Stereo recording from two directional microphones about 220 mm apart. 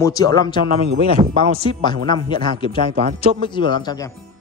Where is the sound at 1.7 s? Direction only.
20° left (ahead or behind).